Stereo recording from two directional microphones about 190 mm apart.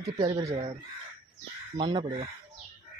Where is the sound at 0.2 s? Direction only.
25° right (ahead or behind).